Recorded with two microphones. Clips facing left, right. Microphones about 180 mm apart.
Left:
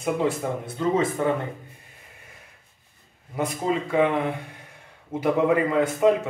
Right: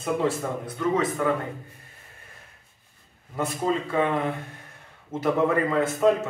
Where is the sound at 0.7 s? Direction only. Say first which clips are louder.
Left 1 dB; 25° left (ahead or behind).